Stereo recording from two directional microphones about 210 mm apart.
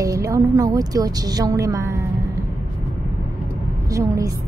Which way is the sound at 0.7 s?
15° right (ahead or behind).